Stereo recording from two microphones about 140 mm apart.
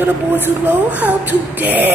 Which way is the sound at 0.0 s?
15° right (ahead or behind).